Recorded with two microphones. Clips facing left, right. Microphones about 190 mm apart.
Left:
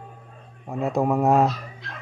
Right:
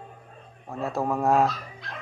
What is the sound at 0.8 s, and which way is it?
Speech, 15° left (ahead or behind).